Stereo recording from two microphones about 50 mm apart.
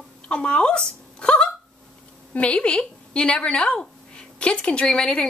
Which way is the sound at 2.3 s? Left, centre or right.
Left.